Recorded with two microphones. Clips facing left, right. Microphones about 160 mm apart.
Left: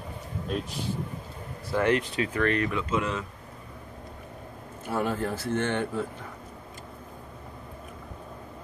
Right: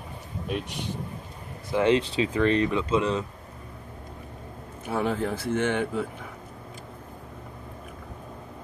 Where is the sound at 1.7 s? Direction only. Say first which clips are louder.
Right 3 dB; 20° right (ahead or behind).